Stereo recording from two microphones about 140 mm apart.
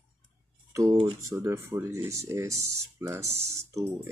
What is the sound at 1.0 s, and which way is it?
Speech, 20° right (ahead or behind).